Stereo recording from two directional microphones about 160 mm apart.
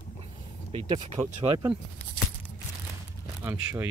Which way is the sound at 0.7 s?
35° right (ahead or behind).